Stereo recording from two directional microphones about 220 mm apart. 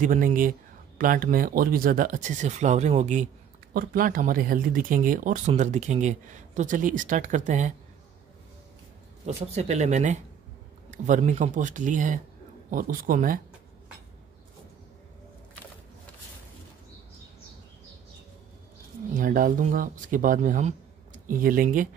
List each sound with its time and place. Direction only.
0.0 s speech: 35° right (ahead or behind)
9.5 s speech: 30° right (ahead or behind)
19.1 s speech: 40° right (ahead or behind)